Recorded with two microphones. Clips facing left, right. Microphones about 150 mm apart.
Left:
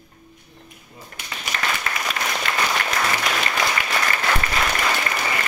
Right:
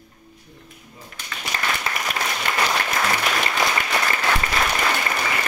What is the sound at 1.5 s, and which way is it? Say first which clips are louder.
Applause: left 1 dB; 35° right (ahead or behind).